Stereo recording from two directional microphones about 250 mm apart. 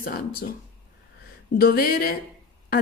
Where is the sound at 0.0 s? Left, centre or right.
Left.